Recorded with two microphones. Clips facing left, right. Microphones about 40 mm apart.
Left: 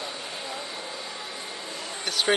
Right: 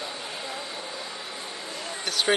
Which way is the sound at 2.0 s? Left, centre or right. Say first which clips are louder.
Even; centre.